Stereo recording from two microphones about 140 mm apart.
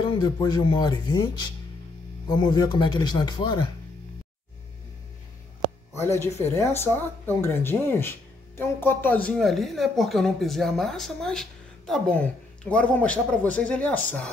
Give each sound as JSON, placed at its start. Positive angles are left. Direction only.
{"t": 0.0, "sound": "speech", "side_deg": 30}
{"t": 6.4, "sound": "speech", "side_deg": 15}